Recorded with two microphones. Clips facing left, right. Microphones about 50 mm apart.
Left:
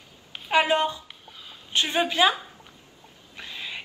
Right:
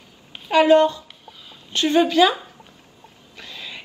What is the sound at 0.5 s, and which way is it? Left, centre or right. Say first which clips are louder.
A woman's voice: right 7 dB; centre.